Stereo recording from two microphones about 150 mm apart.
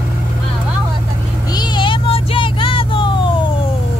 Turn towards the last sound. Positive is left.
turn(degrees=35)  # may be behind; listen again after turning